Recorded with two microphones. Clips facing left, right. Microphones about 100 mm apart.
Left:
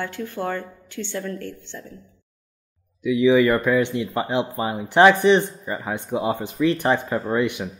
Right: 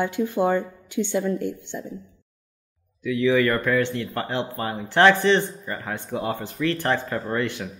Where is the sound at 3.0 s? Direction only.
15° left (ahead or behind).